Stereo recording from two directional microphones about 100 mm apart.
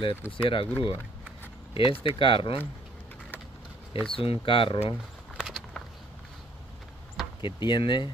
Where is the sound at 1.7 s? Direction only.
65° left (ahead or behind).